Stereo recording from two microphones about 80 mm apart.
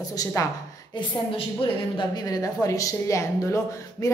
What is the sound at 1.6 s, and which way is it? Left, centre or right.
Speech, left.